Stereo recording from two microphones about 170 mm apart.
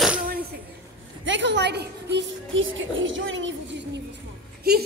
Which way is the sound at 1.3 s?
90° right.